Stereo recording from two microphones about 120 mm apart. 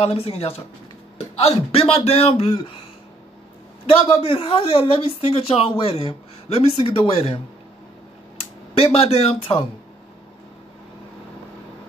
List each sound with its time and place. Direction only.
0.0 s a man's voice: 55° left (ahead or behind)
4.2 s speech: 55° left (ahead or behind)
8.7 s a man's voice: 55° left (ahead or behind)